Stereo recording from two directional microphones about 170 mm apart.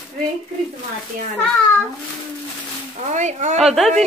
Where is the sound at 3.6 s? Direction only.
Centre (ahead or behind).